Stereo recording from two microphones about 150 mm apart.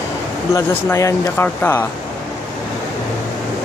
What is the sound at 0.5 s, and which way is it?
Speech, 20° left (ahead or behind).